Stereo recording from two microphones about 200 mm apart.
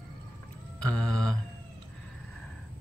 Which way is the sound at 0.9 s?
5° left (ahead or behind).